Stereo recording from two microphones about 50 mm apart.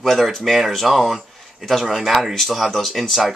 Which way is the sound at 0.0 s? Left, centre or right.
Centre.